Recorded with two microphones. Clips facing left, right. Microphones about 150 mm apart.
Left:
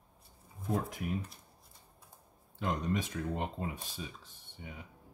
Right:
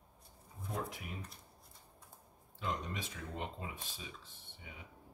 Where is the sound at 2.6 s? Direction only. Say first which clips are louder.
Left 7 dB; 50° left (ahead or behind).